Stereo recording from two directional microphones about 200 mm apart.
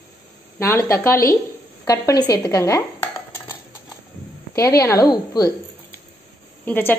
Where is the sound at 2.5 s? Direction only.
15° left (ahead or behind).